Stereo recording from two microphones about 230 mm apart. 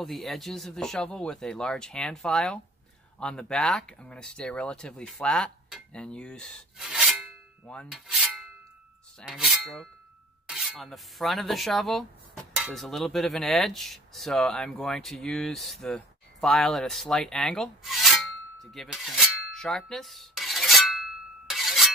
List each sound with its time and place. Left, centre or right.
0.0 s speech: centre
7.6 s rub: centre
9.2 s speech: centre